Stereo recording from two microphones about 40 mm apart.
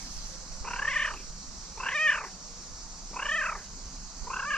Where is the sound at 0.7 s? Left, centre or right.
Centre.